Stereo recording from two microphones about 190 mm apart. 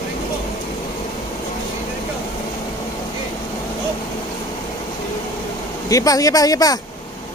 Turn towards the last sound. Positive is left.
turn(degrees=20)  # may be behind; listen again after turning